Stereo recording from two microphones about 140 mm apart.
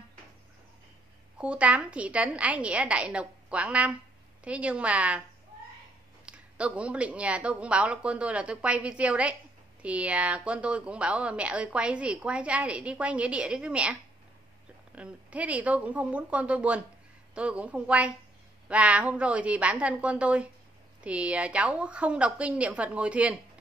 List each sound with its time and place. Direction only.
1.4 s a woman's voice: 10° right (ahead or behind)
6.2 s a woman's voice: 10° right (ahead or behind)
15.0 s a woman's voice: 10° right (ahead or behind)